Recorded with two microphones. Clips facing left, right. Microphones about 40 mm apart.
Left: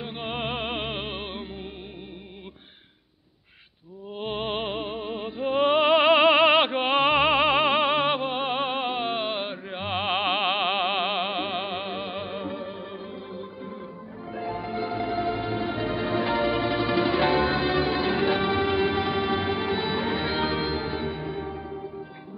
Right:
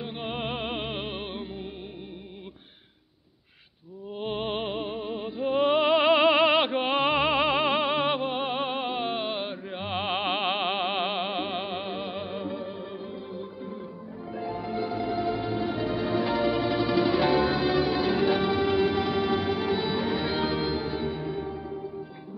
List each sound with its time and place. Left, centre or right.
0.0 s music: left
4.2 s music: left